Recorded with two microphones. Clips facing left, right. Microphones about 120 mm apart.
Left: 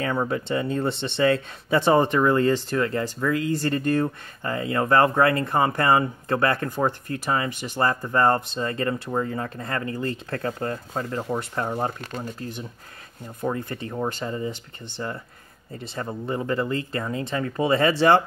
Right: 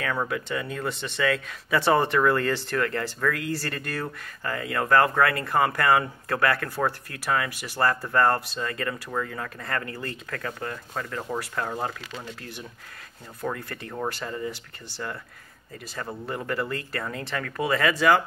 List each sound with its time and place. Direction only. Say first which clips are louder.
0.0 s speech: left 3 dB; 30° left (ahead or behind)
1.8 s speech: left 2 dB; 20° left (ahead or behind)
10.3 s speech: left 3 dB; 35° left (ahead or behind)
11.2 s speech: left 3 dB; 20° left (ahead or behind)
13.4 s speech: left 4 dB; 20° left (ahead or behind)
16.4 s speech: left 3 dB; 20° left (ahead or behind)